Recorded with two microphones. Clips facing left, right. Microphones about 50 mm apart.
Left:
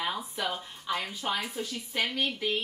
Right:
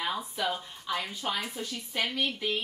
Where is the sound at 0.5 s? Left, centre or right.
Centre.